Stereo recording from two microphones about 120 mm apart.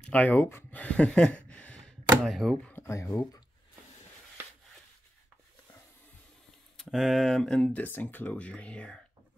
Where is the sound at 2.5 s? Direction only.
15° left (ahead or behind); by 3.4 s 30° left (ahead or behind).